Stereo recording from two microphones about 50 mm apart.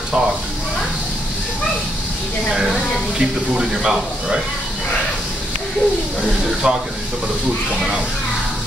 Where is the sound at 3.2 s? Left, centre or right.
Centre.